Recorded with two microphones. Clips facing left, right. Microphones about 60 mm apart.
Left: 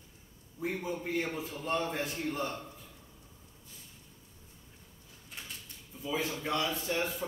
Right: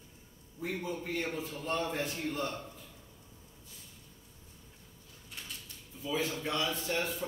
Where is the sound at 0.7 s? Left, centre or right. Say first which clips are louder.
Left 1 dB; centre.